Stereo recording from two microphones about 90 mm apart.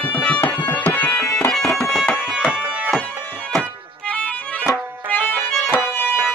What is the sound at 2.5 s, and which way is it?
Music, 20° right (ahead or behind).